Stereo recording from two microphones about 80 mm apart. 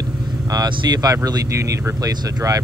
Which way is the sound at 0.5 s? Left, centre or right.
Right.